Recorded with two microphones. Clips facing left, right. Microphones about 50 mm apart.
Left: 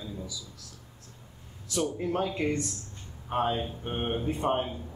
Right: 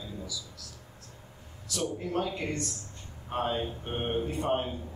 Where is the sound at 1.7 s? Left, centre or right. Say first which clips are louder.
Left 2 dB; left.